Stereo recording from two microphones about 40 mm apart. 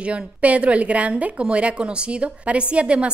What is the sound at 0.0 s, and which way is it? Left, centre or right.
A woman's voice, right.